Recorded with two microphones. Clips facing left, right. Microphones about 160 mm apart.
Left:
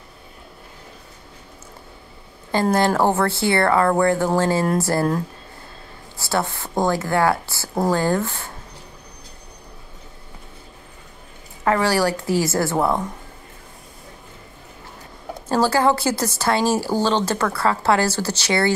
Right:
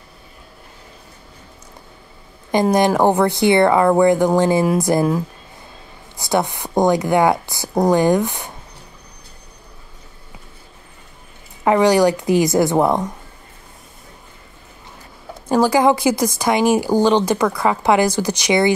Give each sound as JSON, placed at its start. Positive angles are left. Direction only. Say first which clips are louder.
{"t": 2.5, "sound": "a woman's voice", "louder": "right 3 dB", "side_deg": -15}
{"t": 6.1, "sound": "a woman's voice", "louder": "right 4 dB", "side_deg": -15}
{"t": 11.6, "sound": "a woman's voice", "louder": "right 5 dB", "side_deg": -20}
{"t": 15.4, "sound": "a woman's voice", "louder": "right 4 dB", "side_deg": -15}